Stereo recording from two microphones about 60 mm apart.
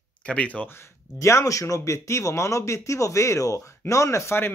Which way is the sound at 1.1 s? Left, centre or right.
Left.